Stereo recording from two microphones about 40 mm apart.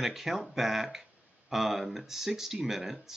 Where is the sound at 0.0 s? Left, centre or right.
Centre.